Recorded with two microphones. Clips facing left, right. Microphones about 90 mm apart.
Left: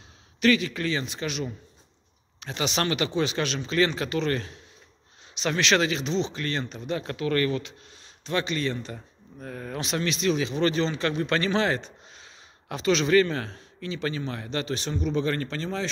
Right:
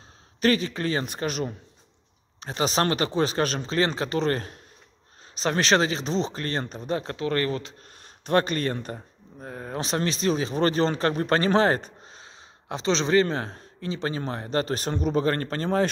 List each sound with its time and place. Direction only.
0.4 s speech: 35° right (ahead or behind)
8.0 s speech: 50° right (ahead or behind)
8.9 s speech: 25° right (ahead or behind); by 12.3 s 40° right (ahead or behind)
12.6 s speech: 30° right (ahead or behind); by 15.9 s 45° right (ahead or behind)